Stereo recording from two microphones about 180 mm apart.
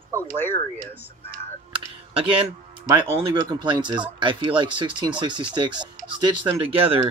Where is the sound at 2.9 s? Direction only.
25° right (ahead or behind).